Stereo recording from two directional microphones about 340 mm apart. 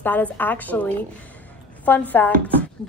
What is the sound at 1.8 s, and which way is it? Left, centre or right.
Speech, centre.